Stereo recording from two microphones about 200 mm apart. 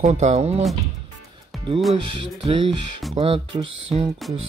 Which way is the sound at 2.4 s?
25° right (ahead or behind).